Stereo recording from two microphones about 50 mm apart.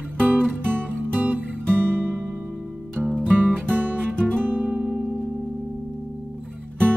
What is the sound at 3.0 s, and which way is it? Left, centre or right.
Music, centre.